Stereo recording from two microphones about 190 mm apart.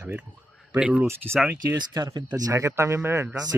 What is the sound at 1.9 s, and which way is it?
A man's voice, 20° right (ahead or behind).